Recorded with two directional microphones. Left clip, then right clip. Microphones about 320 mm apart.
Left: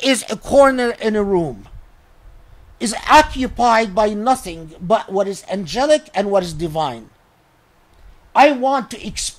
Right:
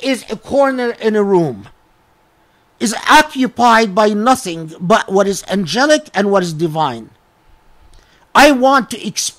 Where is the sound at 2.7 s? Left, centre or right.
Right.